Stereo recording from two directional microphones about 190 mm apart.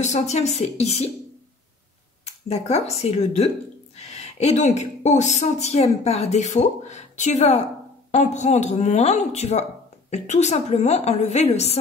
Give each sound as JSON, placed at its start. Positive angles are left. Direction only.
{"t": 0.0, "sound": "speech", "side_deg": 35}
{"t": 2.2, "sound": "a woman's voice", "side_deg": 35}